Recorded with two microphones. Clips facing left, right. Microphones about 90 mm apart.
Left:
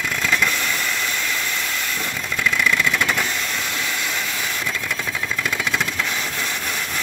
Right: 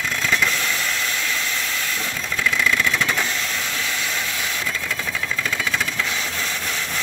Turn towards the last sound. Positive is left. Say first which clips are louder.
# left 1 dB
turn(degrees=5)  # may be behind; listen again after turning